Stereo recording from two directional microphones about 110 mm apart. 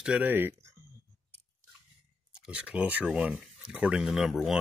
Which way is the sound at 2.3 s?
10° right (ahead or behind).